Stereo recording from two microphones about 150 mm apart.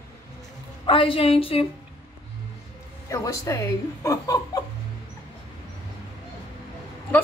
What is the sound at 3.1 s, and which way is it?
Speech, 20° left (ahead or behind).